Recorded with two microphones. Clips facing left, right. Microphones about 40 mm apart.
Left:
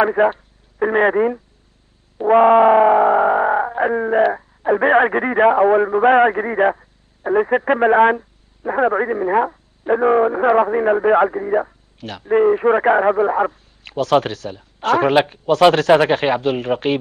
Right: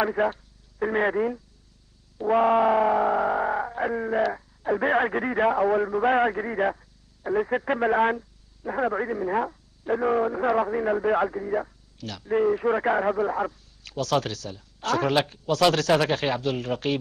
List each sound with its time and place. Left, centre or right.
0.0 s speech: left
2.1 s music: left